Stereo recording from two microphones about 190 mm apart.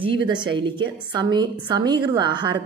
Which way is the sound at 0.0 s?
25° right (ahead or behind).